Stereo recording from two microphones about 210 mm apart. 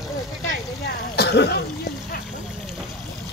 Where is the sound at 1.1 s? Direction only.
50° left (ahead or behind).